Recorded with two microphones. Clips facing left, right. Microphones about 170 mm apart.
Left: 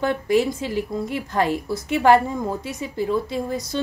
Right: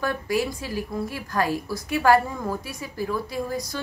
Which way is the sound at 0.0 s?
25° left (ahead or behind).